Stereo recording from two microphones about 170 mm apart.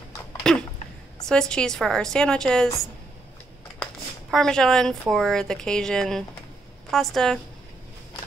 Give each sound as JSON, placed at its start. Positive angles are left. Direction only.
{"t": 0.4, "sound": "a sound", "side_deg": 5}
{"t": 1.3, "sound": "a woman's voice", "side_deg": 5}
{"t": 3.8, "sound": "a woman's voice", "side_deg": 5}